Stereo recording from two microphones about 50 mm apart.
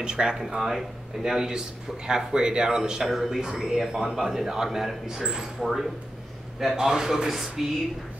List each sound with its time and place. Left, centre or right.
0.0 s speech: centre
0.6 s speech: centre
5.6 s speech: centre